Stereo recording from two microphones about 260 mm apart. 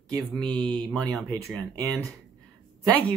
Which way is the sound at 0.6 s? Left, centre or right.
Centre.